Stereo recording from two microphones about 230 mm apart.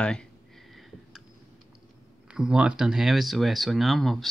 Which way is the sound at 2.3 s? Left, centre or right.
Centre.